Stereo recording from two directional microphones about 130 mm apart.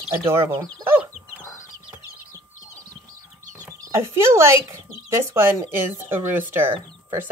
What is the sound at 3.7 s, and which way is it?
Speech, 20° right (ahead or behind).